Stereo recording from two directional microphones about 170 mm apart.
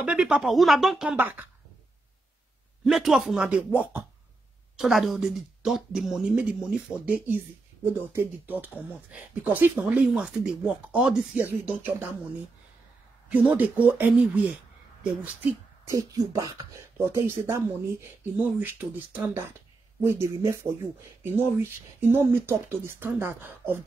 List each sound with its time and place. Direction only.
0.0 s speech: 5° right (ahead or behind)
2.8 s speech: centre (ahead or behind)
13.6 s speech: 10° right (ahead or behind)